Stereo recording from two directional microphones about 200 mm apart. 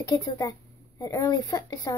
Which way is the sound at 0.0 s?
20° left (ahead or behind).